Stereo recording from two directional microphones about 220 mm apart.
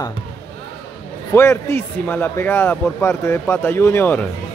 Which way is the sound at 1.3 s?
10° left (ahead or behind).